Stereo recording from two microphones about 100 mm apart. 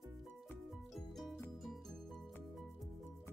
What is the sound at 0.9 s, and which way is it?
Music, centre (ahead or behind).